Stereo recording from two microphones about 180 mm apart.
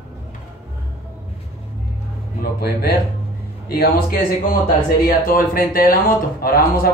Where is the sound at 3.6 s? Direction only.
55° left (ahead or behind).